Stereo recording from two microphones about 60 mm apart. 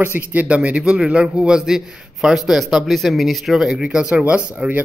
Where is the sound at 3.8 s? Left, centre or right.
Centre.